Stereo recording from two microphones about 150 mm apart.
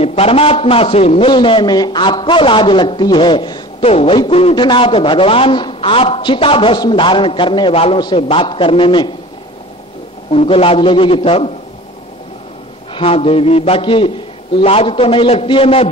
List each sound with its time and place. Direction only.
0.0 s a man's voice: 40° left (ahead or behind)
1.3 s a man's voice: 30° left (ahead or behind)
10.3 s a man's voice: 40° left (ahead or behind)
12.9 s a man's voice: 40° left (ahead or behind)